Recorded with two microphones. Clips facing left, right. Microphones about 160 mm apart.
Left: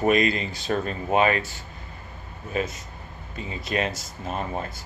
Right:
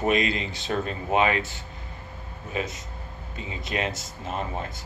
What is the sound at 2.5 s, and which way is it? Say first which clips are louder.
Speech: left 3 dB; 20° right (ahead or behind).